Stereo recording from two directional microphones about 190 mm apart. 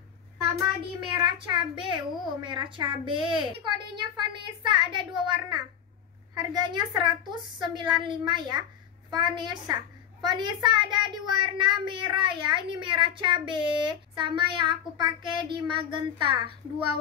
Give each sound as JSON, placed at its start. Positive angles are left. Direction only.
{"t": 1.0, "sound": "a child's voice", "side_deg": -25}